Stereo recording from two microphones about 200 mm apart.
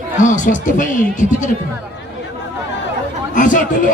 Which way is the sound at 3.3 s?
40° left (ahead or behind).